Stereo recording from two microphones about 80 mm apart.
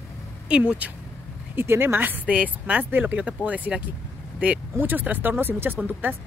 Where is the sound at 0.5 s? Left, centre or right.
Centre.